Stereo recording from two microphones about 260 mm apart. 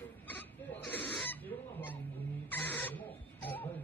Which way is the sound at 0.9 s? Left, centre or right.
Centre.